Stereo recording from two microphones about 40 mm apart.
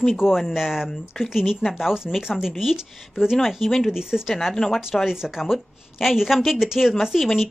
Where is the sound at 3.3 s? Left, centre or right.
Centre.